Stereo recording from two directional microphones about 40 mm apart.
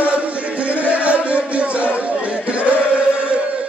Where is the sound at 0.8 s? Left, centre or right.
Right.